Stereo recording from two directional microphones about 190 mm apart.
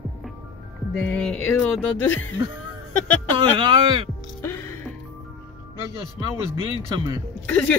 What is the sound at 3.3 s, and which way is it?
Speech, 25° right (ahead or behind).